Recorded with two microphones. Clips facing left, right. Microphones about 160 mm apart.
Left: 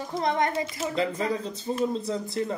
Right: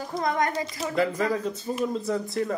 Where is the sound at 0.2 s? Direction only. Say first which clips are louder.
Even; 25° left (ahead or behind).